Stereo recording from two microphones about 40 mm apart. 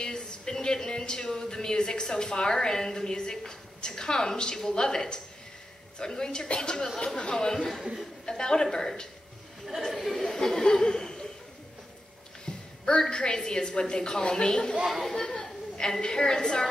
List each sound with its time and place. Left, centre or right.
0.0 s a woman's voice: centre
12.4 s a woman's voice: centre